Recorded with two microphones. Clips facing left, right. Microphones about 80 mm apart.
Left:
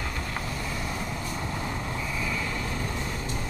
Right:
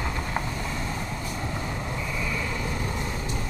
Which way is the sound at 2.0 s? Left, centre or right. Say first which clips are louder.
Right 1 dB; centre.